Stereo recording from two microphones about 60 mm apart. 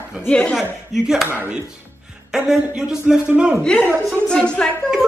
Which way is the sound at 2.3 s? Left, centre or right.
Centre.